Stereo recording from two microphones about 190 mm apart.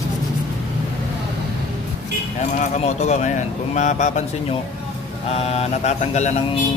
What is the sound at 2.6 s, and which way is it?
Speech, 35° left (ahead or behind).